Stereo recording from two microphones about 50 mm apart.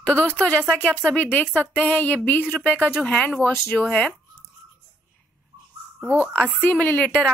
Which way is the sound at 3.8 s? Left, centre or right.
Left.